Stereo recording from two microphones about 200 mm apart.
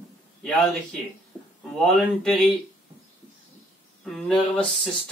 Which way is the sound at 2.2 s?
Centre (ahead or behind).